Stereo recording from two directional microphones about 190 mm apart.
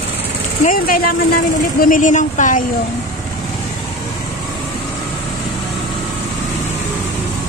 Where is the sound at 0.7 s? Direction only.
50° left (ahead or behind).